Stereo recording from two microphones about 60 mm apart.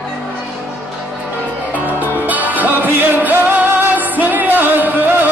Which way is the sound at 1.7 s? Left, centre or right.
Right.